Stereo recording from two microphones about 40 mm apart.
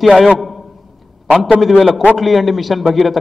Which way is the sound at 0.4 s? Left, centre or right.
Centre.